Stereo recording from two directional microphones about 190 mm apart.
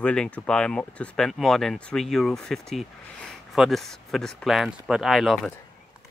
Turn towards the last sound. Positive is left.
turn(degrees=0)  # may be behind; listen again after turning